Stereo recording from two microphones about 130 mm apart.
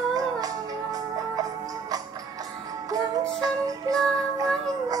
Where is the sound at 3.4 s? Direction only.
30° right (ahead or behind).